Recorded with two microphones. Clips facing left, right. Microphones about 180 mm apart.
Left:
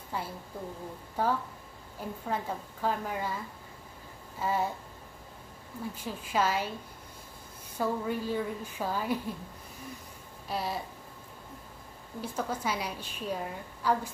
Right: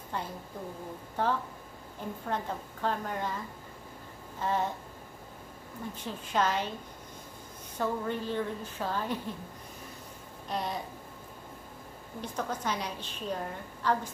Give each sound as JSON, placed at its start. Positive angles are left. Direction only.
{"t": 0.1, "sound": "a woman's voice", "side_deg": 5}
{"t": 4.4, "sound": "a woman's voice", "side_deg": 10}
{"t": 5.9, "sound": "a woman's voice", "side_deg": 5}
{"t": 7.7, "sound": "a woman's voice", "side_deg": 10}
{"t": 10.5, "sound": "a sound", "side_deg": 5}
{"t": 12.2, "sound": "a woman's voice", "side_deg": 10}